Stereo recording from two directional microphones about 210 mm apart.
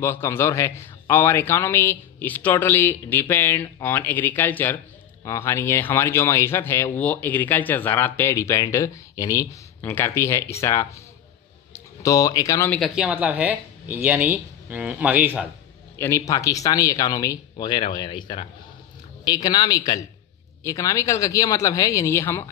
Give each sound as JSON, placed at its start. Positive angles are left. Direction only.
{"t": 0.0, "sound": "speech", "side_deg": 10}
{"t": 16.0, "sound": "speech", "side_deg": 15}